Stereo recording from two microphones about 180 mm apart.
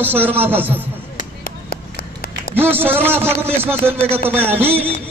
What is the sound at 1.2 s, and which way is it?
Chop, 55° left (ahead or behind).